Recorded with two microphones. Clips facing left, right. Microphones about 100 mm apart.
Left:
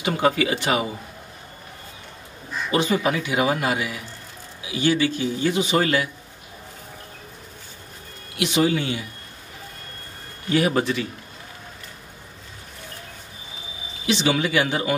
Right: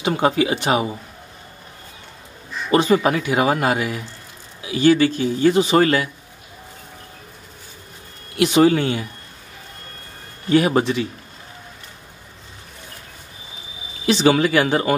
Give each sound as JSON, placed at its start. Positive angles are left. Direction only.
{"t": 0.0, "sound": "speech", "side_deg": -30}
{"t": 2.7, "sound": "a man's voice", "side_deg": -45}
{"t": 8.4, "sound": "a man's voice", "side_deg": -45}
{"t": 10.5, "sound": "speech", "side_deg": -35}
{"t": 10.8, "sound": "speech", "side_deg": -20}
{"t": 14.0, "sound": "a man's voice", "side_deg": -40}